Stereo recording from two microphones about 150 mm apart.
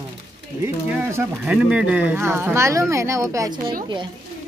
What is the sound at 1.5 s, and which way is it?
Speech, 5° right (ahead or behind).